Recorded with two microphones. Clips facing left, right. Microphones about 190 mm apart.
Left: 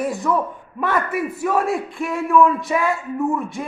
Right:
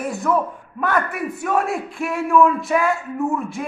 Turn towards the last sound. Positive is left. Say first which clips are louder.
# left 1 dB
turn(degrees=0)  # may be behind; listen again after turning